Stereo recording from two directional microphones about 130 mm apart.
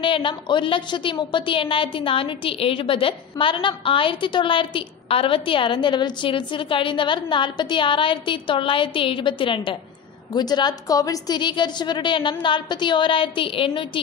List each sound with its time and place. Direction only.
0.0 s a woman's voice: 40° left (ahead or behind)